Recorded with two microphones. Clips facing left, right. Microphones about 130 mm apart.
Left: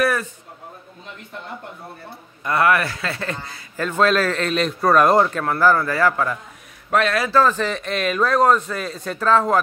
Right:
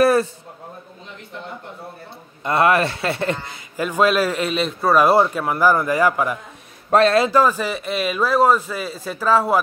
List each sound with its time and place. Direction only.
0.0 s a sound: 30° right (ahead or behind)
2.4 s a man's voice: 25° right (ahead or behind)
3.7 s a man's voice: 10° right (ahead or behind)
6.9 s speech: 35° right (ahead or behind)
7.2 s a man's voice: 10° right (ahead or behind)